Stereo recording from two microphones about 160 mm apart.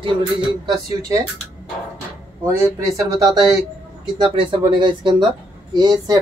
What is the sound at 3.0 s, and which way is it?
Speech, 25° right (ahead or behind).